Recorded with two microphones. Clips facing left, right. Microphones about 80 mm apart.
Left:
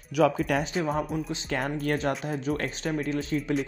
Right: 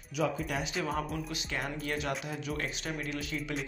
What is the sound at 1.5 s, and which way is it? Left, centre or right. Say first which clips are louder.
Speech: left 8 dB; left.